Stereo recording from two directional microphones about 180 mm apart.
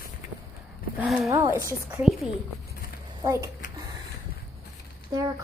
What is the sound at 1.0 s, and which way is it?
Speech, centre (ahead or behind).